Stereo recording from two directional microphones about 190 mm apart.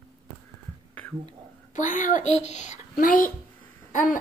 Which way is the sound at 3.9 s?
45° left (ahead or behind).